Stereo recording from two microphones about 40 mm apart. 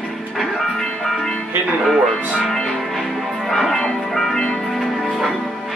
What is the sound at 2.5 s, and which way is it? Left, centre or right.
Music, centre.